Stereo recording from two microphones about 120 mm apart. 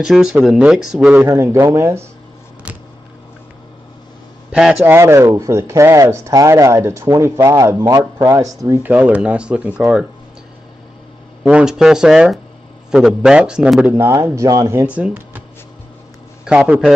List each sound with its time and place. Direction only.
0.0 s speech: 5° right (ahead or behind)
1.2 s speech: 20° right (ahead or behind)
4.5 s a man's voice: 5° right (ahead or behind)
4.8 s speech: 20° right (ahead or behind)
8.8 s speech: 10° right (ahead or behind)
11.4 s speech: 5° right (ahead or behind)
13.9 s speech: 20° right (ahead or behind)
14.9 s speech: 10° right (ahead or behind)
16.4 s speech: 10° right (ahead or behind)